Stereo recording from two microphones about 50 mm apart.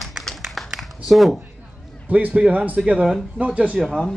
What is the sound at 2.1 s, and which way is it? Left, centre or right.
Speech, right.